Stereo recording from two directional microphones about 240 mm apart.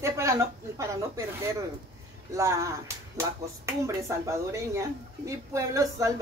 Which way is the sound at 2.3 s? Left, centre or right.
Centre.